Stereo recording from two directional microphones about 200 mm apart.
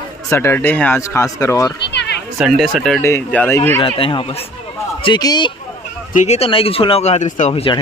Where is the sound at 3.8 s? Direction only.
25° left (ahead or behind).